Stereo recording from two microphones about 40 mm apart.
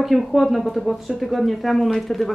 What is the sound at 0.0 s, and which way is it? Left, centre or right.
Speech, centre.